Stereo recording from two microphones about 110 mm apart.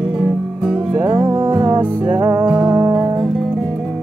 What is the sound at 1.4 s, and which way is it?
Music, 20° right (ahead or behind).